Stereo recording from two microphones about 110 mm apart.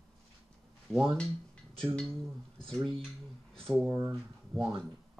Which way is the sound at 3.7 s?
20° right (ahead or behind).